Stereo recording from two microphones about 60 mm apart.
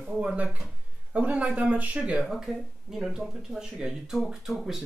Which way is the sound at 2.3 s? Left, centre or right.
Centre.